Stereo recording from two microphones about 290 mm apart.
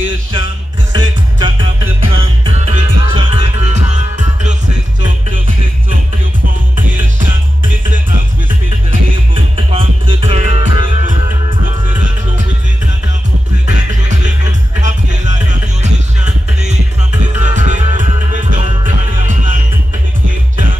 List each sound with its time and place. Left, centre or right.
0.9 s music: centre
6.4 s music: right
8.9 s music: centre
14.8 s music: right
16.6 s music: right